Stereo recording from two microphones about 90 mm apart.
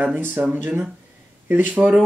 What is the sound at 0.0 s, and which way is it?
Speech, 20° right (ahead or behind).